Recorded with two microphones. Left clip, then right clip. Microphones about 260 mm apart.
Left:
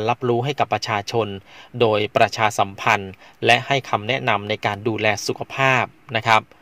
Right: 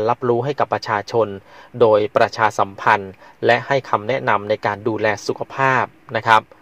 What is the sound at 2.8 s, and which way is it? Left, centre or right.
Speech, left.